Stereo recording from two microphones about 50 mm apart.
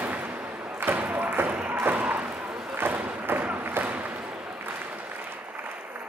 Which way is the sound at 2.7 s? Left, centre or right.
Right.